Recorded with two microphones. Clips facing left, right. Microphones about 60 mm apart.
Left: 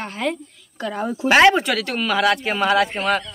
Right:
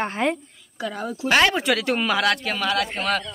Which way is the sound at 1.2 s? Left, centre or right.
Centre.